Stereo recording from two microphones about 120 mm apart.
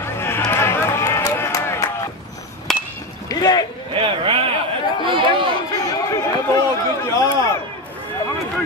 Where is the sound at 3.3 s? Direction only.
35° left (ahead or behind).